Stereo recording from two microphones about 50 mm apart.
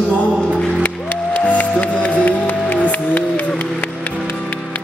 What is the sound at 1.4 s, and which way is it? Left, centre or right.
Music, left.